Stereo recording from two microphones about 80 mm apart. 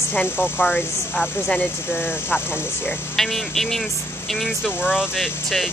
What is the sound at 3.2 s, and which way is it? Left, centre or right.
Speech, centre.